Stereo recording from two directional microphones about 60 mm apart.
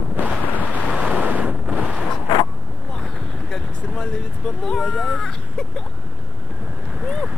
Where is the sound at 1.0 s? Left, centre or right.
Right.